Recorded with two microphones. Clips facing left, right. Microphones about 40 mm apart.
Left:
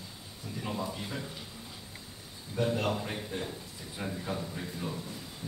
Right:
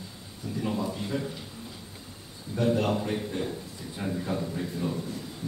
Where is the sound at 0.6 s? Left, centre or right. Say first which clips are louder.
Right 5 dB; centre.